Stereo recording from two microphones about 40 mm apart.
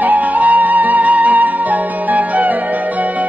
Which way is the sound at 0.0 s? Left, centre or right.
Right.